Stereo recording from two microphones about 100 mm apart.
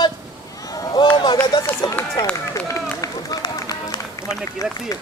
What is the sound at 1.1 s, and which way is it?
Run, 50° left (ahead or behind).